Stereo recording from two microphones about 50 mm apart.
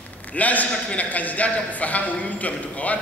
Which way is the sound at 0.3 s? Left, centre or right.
Left.